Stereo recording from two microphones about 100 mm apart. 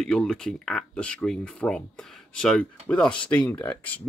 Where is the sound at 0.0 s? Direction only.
5° left (ahead or behind).